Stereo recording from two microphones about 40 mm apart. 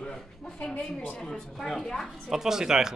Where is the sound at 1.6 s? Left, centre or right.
Centre.